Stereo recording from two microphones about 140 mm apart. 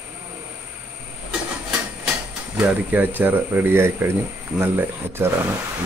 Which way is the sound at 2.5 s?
10° right (ahead or behind).